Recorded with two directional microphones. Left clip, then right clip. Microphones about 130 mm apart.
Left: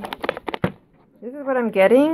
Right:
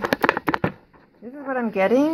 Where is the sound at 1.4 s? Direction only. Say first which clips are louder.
Left 5 dB; 40° left (ahead or behind).